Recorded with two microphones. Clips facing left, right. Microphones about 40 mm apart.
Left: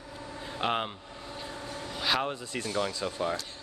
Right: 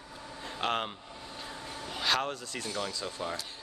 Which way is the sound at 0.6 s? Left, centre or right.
Centre.